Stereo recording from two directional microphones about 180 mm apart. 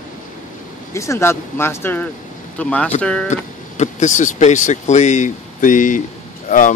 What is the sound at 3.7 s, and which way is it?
Speech, 40° left (ahead or behind).